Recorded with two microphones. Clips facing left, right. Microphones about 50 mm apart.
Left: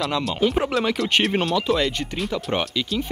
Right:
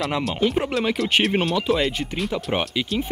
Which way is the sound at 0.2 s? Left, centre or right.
Centre.